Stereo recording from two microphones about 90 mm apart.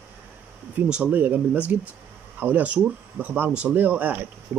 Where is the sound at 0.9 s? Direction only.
20° right (ahead or behind).